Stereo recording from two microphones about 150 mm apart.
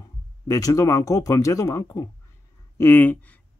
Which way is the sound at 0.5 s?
20° left (ahead or behind).